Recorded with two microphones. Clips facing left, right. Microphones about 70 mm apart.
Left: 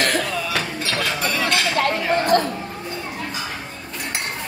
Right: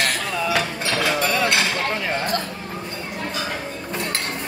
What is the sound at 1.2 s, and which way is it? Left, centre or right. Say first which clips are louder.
Speech: right 2 dB; centre.